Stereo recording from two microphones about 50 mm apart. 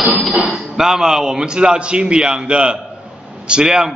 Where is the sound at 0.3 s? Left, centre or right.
Centre.